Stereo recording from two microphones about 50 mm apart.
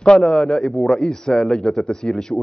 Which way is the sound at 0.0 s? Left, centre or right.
Centre.